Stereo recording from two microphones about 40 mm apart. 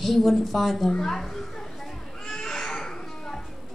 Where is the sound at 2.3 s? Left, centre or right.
Centre.